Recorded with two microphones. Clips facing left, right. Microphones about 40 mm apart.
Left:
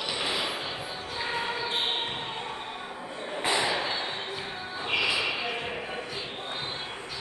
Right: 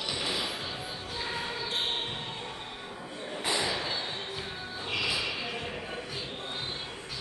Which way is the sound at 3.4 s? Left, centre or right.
Left.